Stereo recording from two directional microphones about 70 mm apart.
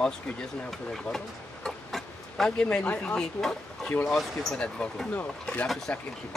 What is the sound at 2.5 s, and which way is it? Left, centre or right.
Speech, centre.